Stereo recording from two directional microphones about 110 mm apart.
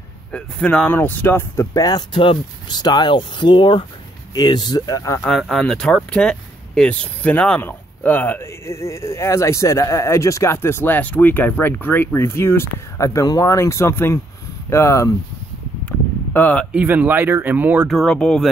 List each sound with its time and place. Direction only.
0.3 s speech: 10° left (ahead or behind)
1.6 s speech: 30° left (ahead or behind)
2.1 s speech: 45° left (ahead or behind); by 5.2 s 30° left (ahead or behind)
5.3 s speech: 5° left (ahead or behind); by 15.1 s 30° left (ahead or behind)
16.3 s speech: 15° left (ahead or behind)
16.7 s speech: 15° right (ahead or behind)
17.8 s speech: 5° left (ahead or behind)